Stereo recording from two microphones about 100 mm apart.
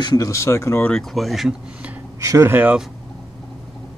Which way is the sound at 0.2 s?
30° left (ahead or behind).